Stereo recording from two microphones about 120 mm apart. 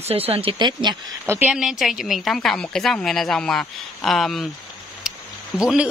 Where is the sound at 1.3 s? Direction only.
15° right (ahead or behind).